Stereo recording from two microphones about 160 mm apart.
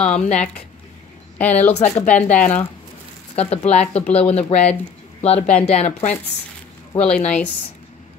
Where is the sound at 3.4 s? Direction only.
40° left (ahead or behind).